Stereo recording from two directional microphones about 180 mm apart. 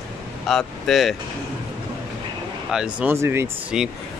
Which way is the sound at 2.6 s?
5° right (ahead or behind).